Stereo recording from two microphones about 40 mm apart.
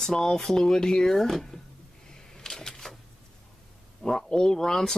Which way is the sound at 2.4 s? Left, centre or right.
Centre.